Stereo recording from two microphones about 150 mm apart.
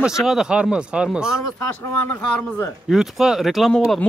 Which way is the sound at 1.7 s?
10° left (ahead or behind).